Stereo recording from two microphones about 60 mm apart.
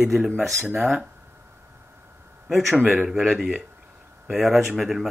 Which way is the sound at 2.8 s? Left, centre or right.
Centre.